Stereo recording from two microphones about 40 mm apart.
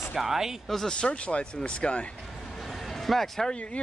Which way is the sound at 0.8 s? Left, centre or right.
Left.